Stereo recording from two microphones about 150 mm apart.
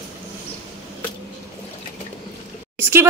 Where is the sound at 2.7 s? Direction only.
15° right (ahead or behind).